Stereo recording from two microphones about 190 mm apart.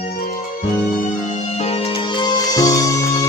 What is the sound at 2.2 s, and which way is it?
Music, 20° left (ahead or behind).